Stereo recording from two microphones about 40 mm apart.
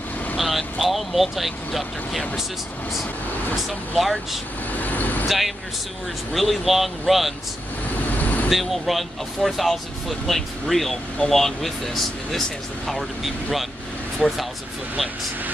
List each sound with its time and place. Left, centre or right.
0.4 s speech: centre
3.5 s speech: centre
4.7 s vehicle: left
6.3 s speech: centre
7.9 s vehicle: left
8.5 s speech: centre